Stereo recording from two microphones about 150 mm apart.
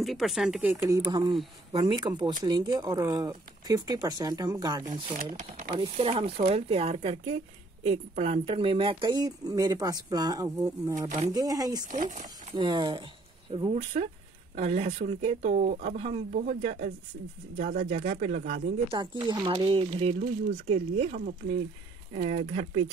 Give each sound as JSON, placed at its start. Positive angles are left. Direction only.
{"t": 0.0, "sound": "speech", "side_deg": 0}
{"t": 0.8, "sound": "speech", "side_deg": -25}
{"t": 5.7, "sound": "speech", "side_deg": -40}
{"t": 11.9, "sound": "speech", "side_deg": -55}
{"t": 12.5, "sound": "speech", "side_deg": -30}
{"t": 16.3, "sound": "speech", "side_deg": -65}
{"t": 17.6, "sound": "speech", "side_deg": -65}
{"t": 17.8, "sound": "speech", "side_deg": -45}
{"t": 18.9, "sound": "speech", "side_deg": -30}